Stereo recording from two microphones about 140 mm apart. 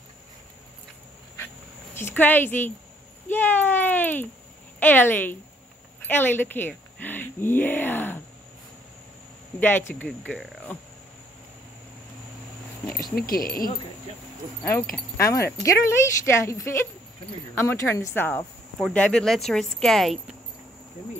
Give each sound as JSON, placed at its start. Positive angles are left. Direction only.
{"t": 2.0, "sound": "speech", "side_deg": 15}
{"t": 9.6, "sound": "speech", "side_deg": 15}
{"t": 13.1, "sound": "speech", "side_deg": 90}
{"t": 14.6, "sound": "a woman's voice", "side_deg": 15}
{"t": 18.8, "sound": "speech", "side_deg": 5}